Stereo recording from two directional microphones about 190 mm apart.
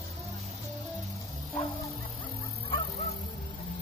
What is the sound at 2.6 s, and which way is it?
Music, 30° left (ahead or behind).